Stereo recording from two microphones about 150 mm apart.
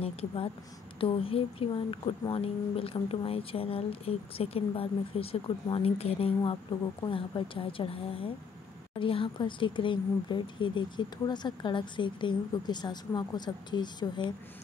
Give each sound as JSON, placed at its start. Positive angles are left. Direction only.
{"t": 0.0, "sound": "speech", "side_deg": 40}